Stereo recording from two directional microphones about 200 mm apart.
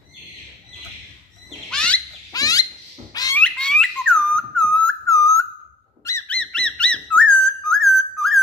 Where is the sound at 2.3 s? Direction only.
20° left (ahead or behind).